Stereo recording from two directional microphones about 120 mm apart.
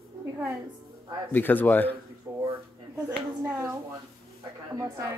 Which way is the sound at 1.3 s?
15° left (ahead or behind).